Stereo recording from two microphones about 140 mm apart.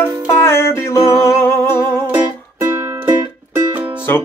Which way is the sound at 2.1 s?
15° right (ahead or behind).